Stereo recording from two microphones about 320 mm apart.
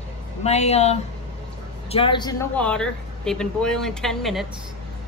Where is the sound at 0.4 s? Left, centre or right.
Centre.